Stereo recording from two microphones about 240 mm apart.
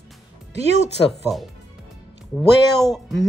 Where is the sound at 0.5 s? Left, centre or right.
Right.